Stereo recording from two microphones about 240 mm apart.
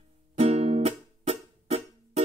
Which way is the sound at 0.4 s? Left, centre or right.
Right.